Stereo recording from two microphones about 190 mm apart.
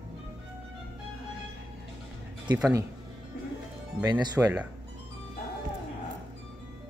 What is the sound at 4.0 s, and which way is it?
Speech, 20° right (ahead or behind).